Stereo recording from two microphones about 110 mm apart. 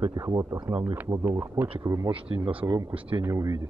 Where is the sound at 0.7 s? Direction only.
15° right (ahead or behind).